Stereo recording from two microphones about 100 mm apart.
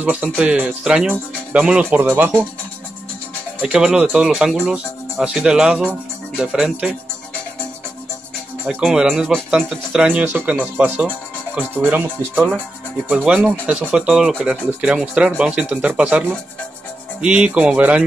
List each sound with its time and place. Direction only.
0.4 s speech: 10° right (ahead or behind)
3.6 s speech: 10° right (ahead or behind)
8.6 s speech: 5° right (ahead or behind)
10.0 s speech: 15° right (ahead or behind)
13.2 s speech: 5° right (ahead or behind)